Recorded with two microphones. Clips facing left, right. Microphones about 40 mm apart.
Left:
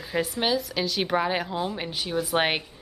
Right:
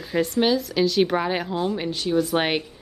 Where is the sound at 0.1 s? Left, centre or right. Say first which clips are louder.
Right 5 dB; centre.